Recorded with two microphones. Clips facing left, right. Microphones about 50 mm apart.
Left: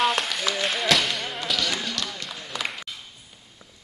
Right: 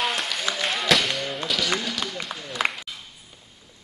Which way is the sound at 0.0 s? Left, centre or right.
Centre.